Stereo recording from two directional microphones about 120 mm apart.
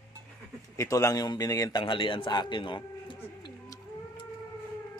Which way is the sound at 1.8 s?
45° left (ahead or behind).